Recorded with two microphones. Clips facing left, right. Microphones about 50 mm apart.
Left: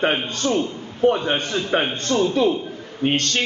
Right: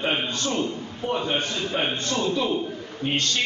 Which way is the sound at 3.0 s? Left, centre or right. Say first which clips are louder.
Left 5 dB; left.